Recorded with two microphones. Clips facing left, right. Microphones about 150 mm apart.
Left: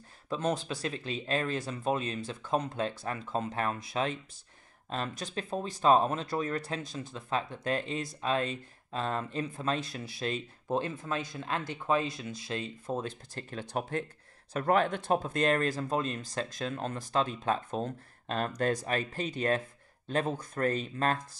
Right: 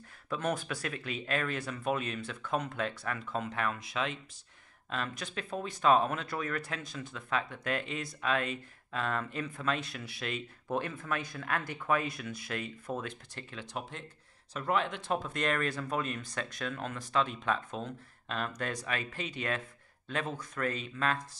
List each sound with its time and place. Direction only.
0.3 s speech: 25° left (ahead or behind); by 15.2 s 45° left (ahead or behind)
15.2 s speech: 35° left (ahead or behind)